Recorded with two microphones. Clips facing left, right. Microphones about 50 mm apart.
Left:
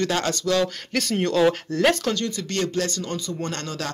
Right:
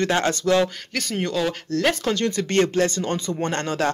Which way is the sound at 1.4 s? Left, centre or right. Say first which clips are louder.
Left 4 dB; centre.